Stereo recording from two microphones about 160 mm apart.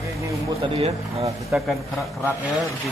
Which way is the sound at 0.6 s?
40° right (ahead or behind).